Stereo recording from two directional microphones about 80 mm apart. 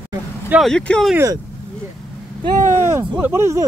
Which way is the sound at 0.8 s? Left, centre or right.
Centre.